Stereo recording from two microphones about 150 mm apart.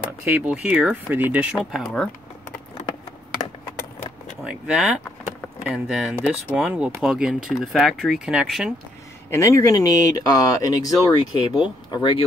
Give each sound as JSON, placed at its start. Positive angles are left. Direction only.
{"t": 0.2, "sound": "speech", "side_deg": -5}
{"t": 4.5, "sound": "speech", "side_deg": -5}
{"t": 9.3, "sound": "speech", "side_deg": 20}